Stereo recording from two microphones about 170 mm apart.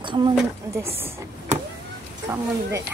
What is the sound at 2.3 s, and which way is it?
Speech, 15° right (ahead or behind).